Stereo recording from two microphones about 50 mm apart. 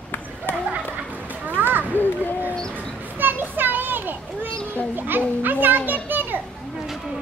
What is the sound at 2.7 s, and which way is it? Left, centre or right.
Children playing, right.